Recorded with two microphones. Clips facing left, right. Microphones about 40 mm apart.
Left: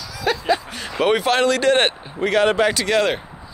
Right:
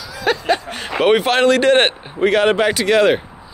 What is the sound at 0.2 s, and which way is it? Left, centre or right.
Speech, right.